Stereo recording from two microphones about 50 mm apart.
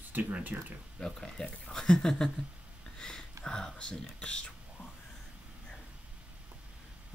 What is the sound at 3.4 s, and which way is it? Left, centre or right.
Speech, centre.